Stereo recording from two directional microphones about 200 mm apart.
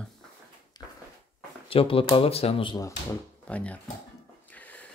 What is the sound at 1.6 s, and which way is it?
Speech, 25° left (ahead or behind).